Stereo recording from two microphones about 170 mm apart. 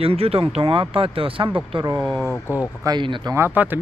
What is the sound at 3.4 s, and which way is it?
Speech, 10° right (ahead or behind).